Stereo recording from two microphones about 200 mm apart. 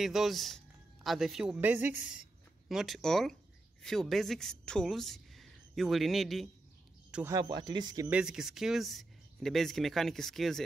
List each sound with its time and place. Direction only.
0.0 s a woman's voice: centre (ahead or behind)
7.3 s speech: 20° right (ahead or behind)
8.1 s speech: 5° right (ahead or behind)